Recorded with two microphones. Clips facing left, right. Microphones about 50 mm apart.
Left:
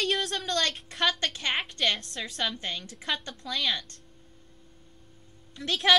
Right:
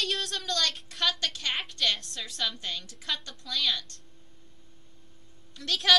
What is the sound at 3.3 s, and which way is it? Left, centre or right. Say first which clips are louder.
Speech: left 3 dB; centre.